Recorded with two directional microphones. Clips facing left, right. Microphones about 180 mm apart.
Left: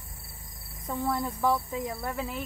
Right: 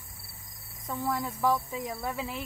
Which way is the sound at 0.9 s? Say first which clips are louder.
Left 2 dB; 15° left (ahead or behind).